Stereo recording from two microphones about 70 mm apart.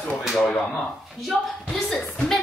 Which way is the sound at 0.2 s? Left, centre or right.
Centre.